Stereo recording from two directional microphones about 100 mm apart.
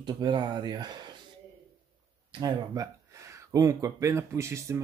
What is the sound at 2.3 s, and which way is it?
Speech, 40° right (ahead or behind).